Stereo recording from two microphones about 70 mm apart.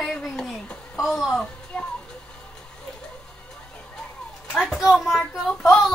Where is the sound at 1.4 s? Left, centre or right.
Centre.